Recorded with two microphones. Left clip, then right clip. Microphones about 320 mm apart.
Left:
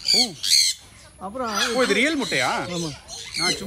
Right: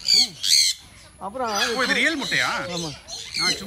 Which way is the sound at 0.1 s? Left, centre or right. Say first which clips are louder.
Right 1 dB; centre.